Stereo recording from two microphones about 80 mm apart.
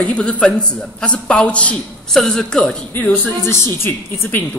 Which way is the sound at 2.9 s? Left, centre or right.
Left.